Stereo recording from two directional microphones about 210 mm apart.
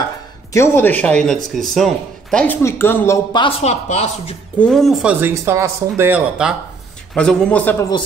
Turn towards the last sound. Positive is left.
turn(degrees=10)  # may be behind; listen again after turning